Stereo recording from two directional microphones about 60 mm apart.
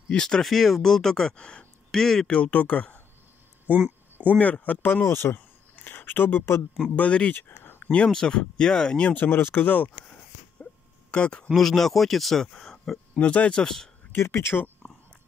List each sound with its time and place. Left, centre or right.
0.1 s speech: centre
2.3 s speech: left
3.7 s speech: right
4.4 s speech: left
5.0 s speech: left
7.0 s speech: left
7.3 s a sound: left
7.9 s speech: centre
9.1 s speech: left
10.6 s a sound: centre
11.5 s speech: centre
13.2 s speech: left
14.1 s speech: left